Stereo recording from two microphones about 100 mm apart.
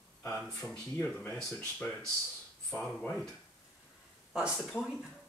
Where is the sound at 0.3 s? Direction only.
5° left (ahead or behind).